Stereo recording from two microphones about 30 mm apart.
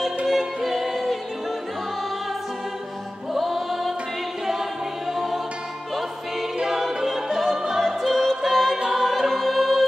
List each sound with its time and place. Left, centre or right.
0.2 s music: centre
3.3 s music: centre
5.1 s music: centre
6.9 s music: centre
7.8 s music: centre
8.4 s a capella: centre
8.9 s choir: centre